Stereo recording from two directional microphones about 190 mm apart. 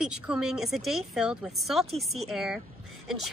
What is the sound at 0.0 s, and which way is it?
A woman's voice, 5° right (ahead or behind).